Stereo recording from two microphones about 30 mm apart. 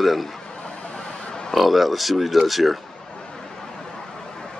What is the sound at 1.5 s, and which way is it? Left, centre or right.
Speech, centre.